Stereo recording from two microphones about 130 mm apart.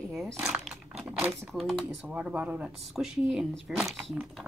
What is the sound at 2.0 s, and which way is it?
A woman's voice, 10° right (ahead or behind).